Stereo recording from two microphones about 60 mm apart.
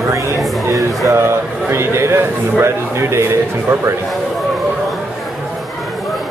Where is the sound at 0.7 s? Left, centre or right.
Right.